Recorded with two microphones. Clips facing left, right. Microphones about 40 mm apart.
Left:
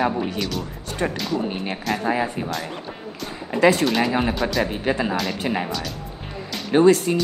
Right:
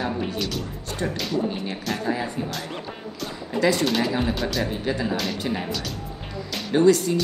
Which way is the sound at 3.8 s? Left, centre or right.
Centre.